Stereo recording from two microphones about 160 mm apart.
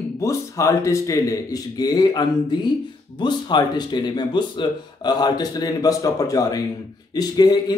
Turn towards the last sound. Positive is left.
turn(degrees=25)  # may be behind; listen again after turning